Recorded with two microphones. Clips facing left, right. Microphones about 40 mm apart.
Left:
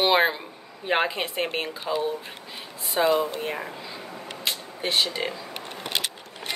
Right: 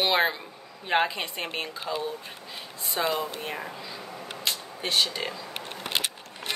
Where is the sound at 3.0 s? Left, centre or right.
Centre.